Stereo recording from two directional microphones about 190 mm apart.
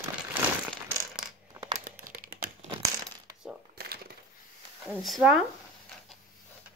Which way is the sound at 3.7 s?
55° right (ahead or behind).